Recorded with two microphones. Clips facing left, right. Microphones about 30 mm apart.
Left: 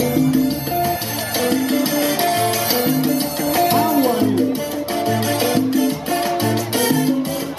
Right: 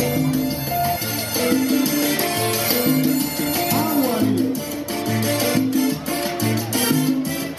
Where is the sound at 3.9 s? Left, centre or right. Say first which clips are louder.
Left 3 dB; left.